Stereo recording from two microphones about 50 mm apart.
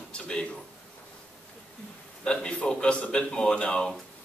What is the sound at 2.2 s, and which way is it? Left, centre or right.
A man's voice, centre.